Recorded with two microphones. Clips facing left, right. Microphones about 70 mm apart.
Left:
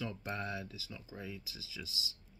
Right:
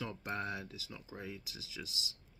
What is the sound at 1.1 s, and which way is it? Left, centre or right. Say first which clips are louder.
Speech: even; right.